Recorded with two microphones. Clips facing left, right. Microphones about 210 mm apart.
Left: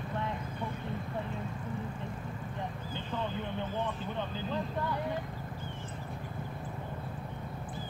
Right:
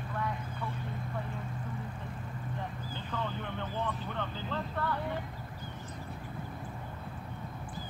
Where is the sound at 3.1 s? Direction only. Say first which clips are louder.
Left 1 dB; 15° left (ahead or behind).